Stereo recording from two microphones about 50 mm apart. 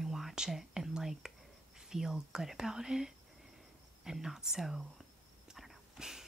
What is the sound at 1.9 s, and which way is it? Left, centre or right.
Speech, centre.